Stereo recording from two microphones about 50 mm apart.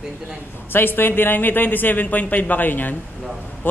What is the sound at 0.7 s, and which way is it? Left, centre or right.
A man's voice, left.